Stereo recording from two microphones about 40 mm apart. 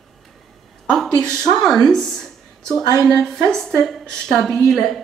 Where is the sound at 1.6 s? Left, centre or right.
Centre.